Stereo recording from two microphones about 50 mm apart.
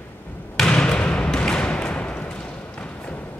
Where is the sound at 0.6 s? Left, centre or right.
Left.